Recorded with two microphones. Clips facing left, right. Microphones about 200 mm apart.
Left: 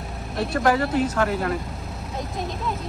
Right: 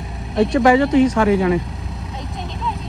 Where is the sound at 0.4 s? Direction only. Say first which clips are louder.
Right 8 dB; 90° right.